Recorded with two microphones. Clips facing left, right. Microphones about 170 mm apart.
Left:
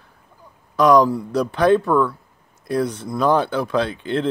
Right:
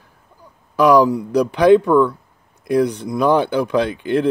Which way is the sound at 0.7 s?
10° right (ahead or behind).